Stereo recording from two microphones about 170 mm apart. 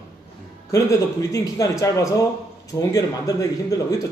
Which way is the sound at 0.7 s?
20° left (ahead or behind).